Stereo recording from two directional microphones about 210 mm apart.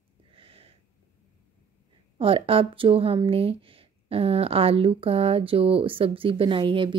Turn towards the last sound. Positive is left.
turn(degrees=-25)  # may be behind; listen again after turning